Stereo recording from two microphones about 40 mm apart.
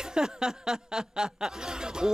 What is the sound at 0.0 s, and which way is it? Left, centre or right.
Chuckle, centre.